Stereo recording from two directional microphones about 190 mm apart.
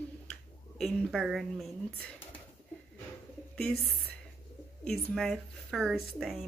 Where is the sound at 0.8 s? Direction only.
Centre (ahead or behind).